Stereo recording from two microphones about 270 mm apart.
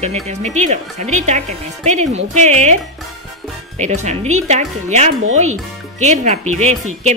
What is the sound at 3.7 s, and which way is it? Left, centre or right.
Speech, right.